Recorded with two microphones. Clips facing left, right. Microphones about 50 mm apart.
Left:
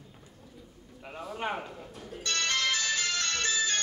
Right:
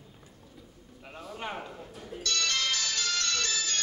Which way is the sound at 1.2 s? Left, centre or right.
Left.